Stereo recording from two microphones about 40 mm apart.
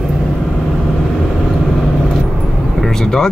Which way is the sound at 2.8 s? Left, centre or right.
Centre.